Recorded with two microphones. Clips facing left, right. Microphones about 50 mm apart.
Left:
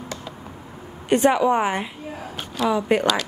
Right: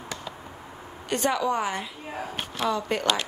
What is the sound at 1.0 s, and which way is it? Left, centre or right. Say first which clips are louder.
A woman's voice: left 8 dB; left.